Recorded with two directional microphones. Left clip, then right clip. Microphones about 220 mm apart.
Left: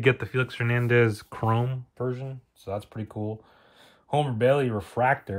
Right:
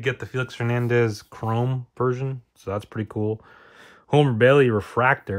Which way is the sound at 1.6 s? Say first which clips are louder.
Right 7 dB; 25° right (ahead or behind).